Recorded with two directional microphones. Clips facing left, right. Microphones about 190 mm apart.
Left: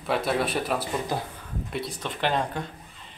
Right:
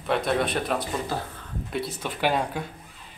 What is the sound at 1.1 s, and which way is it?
Speech, 15° left (ahead or behind).